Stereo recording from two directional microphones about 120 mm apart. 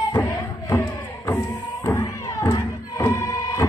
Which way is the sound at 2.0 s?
25° left (ahead or behind).